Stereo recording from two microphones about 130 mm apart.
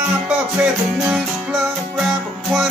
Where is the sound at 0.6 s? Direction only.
10° right (ahead or behind).